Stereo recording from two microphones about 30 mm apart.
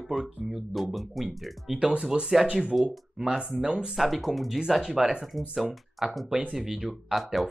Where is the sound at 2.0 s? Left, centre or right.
Right.